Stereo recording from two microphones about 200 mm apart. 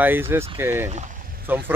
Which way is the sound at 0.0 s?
10° right (ahead or behind).